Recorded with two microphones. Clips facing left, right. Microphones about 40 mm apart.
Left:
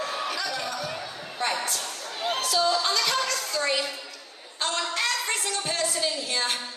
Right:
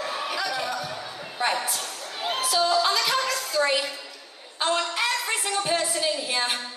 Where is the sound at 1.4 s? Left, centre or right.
Centre.